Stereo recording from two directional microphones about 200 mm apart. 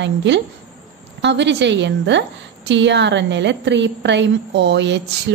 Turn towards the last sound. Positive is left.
turn(degrees=-60)  # may be behind; listen again after turning